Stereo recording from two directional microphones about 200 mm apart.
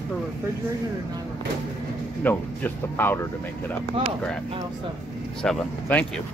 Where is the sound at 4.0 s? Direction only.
25° right (ahead or behind).